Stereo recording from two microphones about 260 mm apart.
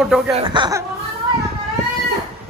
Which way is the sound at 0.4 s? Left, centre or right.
Centre.